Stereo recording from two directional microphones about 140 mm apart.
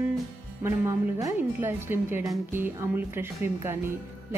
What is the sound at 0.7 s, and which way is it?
Speech, 20° right (ahead or behind).